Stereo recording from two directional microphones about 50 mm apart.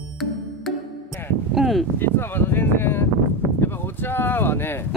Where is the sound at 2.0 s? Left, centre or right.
Left.